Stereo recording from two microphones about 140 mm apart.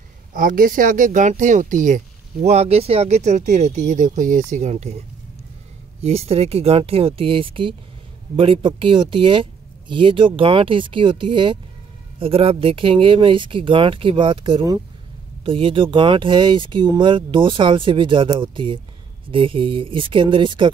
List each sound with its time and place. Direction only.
0.3 s speech: 80° right; by 4.9 s 55° right (ahead or behind)
5.9 s speech: 45° right (ahead or behind)